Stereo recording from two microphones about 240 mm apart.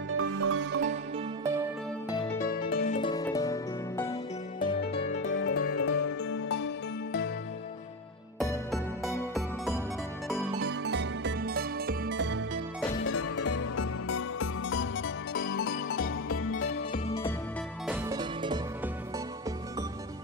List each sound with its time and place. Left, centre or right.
0.1 s music: right
0.6 s music: right
2.3 s music: left
3.0 s music: centre
5.2 s music: left
10.6 s music: right
13.0 s music: left
17.8 s music: centre